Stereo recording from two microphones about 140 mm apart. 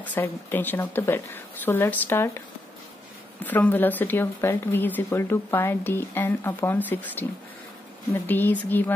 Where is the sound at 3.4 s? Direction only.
10° left (ahead or behind).